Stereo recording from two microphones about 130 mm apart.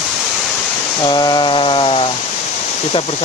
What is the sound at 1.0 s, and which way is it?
Speech, 35° left (ahead or behind).